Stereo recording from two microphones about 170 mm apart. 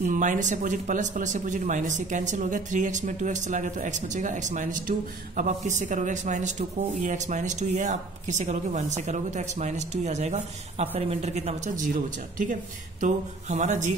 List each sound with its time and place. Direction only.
0.0 s speech: 50° right (ahead or behind)
13.0 s speech: 45° right (ahead or behind)